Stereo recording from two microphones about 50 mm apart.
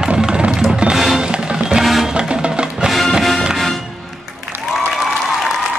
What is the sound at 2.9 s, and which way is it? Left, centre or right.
Music, centre.